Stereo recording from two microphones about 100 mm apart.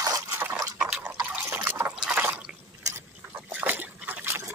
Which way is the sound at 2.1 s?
20° right (ahead or behind).